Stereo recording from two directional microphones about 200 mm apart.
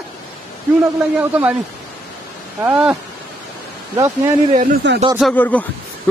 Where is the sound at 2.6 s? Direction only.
5° right (ahead or behind).